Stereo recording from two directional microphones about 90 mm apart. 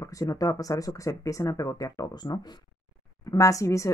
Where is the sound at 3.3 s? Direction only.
40° left (ahead or behind).